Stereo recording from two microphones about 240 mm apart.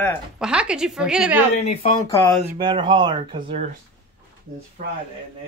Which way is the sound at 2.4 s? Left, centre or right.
Centre.